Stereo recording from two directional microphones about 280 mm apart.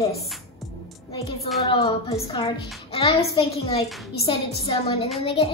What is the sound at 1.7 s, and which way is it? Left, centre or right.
A child's voice, centre.